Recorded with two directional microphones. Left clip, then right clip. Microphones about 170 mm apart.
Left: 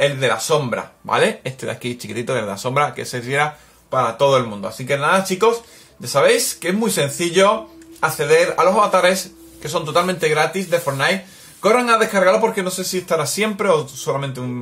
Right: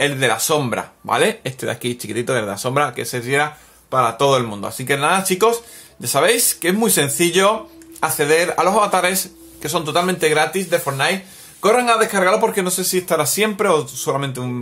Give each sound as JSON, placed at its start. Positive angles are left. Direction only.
{"t": 0.0, "sound": "speech", "side_deg": -40}
{"t": 1.6, "sound": "speech", "side_deg": -15}
{"t": 3.9, "sound": "speech", "side_deg": -35}